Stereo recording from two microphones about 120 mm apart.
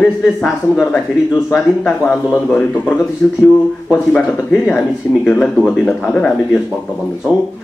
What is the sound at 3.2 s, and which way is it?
Speech, 10° left (ahead or behind).